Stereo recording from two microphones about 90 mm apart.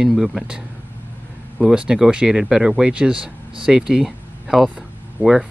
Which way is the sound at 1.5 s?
10° right (ahead or behind).